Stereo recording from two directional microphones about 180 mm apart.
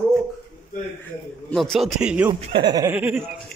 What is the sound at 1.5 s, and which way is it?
Speech, centre (ahead or behind).